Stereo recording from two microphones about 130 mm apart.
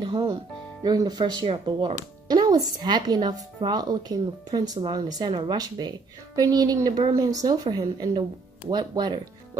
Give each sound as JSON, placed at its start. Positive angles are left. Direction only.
{"t": 0.0, "sound": "a woman's voice", "side_deg": -40}